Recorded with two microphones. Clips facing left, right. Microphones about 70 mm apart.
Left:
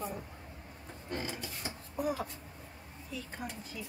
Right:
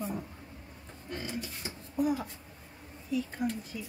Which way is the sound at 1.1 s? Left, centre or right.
Left.